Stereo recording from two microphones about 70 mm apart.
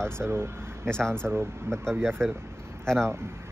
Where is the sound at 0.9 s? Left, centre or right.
Centre.